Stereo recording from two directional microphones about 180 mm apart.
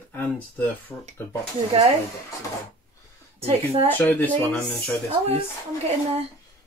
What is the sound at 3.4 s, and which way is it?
Speech, 35° right (ahead or behind).